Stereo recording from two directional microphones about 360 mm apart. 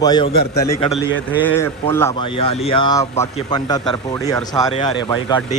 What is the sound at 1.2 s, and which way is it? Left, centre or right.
Speech, centre.